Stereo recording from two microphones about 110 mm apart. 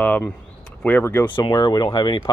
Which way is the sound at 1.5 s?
40° left (ahead or behind).